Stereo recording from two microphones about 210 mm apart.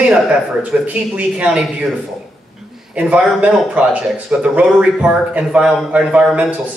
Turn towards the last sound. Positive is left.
turn(degrees=-5)  # may be behind; listen again after turning